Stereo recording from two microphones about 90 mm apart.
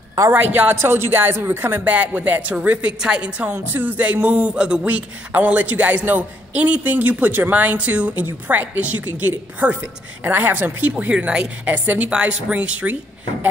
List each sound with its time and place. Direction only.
0.3 s a man's voice: 20° right (ahead or behind)